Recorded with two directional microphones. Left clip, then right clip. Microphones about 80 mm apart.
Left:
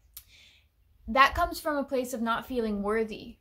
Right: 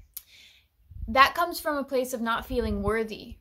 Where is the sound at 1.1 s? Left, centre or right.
Right.